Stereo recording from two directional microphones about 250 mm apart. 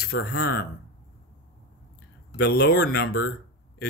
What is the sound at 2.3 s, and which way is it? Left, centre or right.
Speech, left.